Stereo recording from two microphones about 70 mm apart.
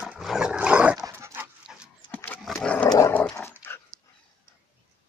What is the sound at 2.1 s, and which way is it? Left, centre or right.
Dog, left.